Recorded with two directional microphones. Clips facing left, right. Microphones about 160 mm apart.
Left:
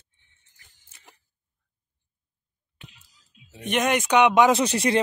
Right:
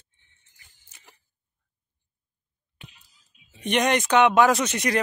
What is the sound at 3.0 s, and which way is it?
Music, 80° left.